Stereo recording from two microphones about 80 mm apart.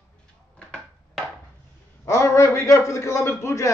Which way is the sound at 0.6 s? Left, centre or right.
Centre.